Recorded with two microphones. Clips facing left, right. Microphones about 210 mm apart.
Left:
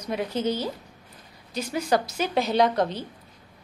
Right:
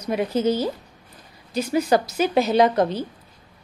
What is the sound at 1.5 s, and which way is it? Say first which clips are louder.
A woman's voice: right 5 dB; 5° right (ahead or behind).